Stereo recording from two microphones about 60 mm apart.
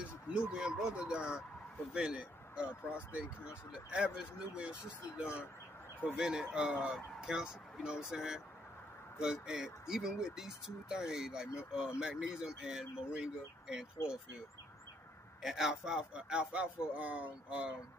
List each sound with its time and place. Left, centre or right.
0.0 s speech: centre
15.4 s speech: centre